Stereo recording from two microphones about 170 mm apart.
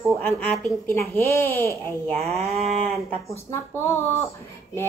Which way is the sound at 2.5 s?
40° right (ahead or behind).